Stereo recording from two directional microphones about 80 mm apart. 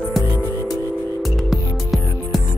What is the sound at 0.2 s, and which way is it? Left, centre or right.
Music, centre.